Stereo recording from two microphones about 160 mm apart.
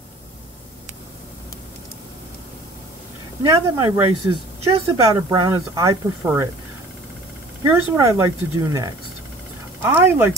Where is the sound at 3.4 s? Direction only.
20° right (ahead or behind).